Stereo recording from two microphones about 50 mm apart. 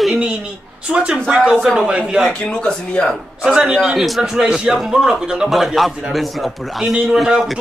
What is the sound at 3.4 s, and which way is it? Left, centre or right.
Speech, centre.